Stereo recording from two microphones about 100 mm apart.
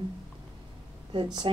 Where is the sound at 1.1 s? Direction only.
55° right (ahead or behind).